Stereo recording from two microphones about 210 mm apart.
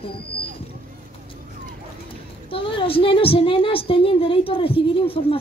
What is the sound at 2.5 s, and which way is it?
A woman's voice, 25° left (ahead or behind).